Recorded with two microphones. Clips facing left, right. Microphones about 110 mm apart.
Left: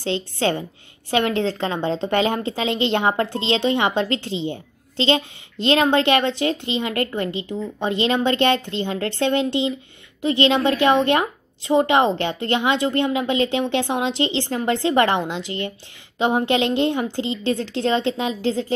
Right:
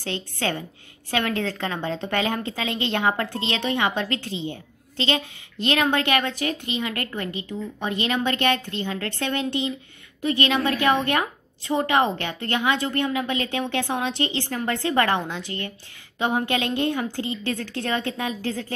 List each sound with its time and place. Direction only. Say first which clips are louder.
0.0 s a woman's voice: left 6 dB; 25° left (ahead or behind)